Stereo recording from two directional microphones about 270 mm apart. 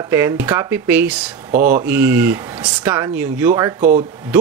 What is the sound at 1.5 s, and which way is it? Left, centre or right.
Speech, right.